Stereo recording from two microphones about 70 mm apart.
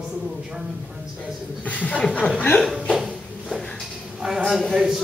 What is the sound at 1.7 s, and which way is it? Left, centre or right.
Speech, left.